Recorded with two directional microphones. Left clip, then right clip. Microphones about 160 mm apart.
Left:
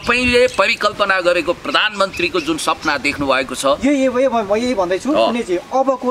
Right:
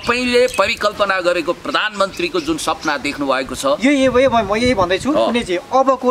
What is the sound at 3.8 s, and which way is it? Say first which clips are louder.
Speech: right 2 dB; 30° right (ahead or behind).